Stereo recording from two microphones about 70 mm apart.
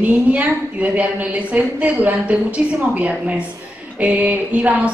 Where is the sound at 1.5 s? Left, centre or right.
Right.